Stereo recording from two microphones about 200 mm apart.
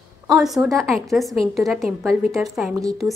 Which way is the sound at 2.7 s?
15° right (ahead or behind).